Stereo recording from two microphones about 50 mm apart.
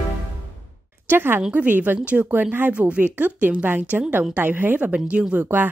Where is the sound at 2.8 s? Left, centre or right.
Right.